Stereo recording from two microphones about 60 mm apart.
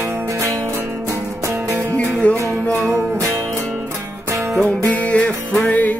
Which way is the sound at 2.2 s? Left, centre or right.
Left.